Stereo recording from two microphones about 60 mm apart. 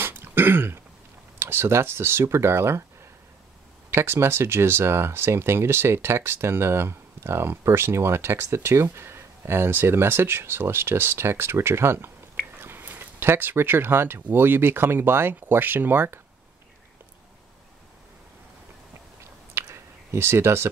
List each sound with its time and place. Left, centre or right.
0.0 s throat clearing: right
1.4 s speech: right
3.9 s speech: right
12.5 s a sound: right
14.3 s speech: right
19.5 s a sound: right